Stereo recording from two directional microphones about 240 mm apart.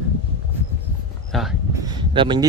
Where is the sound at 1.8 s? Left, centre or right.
Centre.